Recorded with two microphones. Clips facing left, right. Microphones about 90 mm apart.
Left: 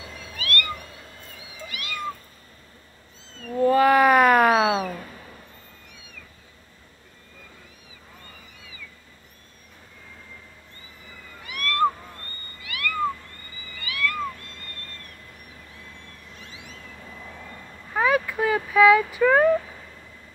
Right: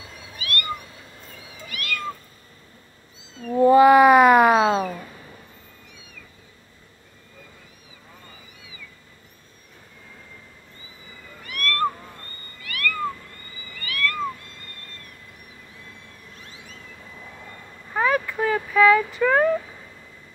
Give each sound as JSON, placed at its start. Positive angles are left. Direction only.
{"t": 0.4, "sound": "cat", "side_deg": -15}
{"t": 1.8, "sound": "cat", "side_deg": 20}
{"t": 3.5, "sound": "cat", "side_deg": -15}
{"t": 11.4, "sound": "cat", "side_deg": 20}
{"t": 17.9, "sound": "a sound", "side_deg": 5}